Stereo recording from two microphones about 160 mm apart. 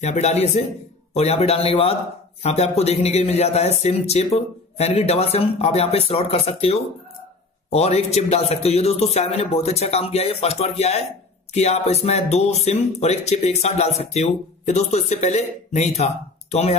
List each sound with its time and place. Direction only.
0.0 s speech: 45° left (ahead or behind)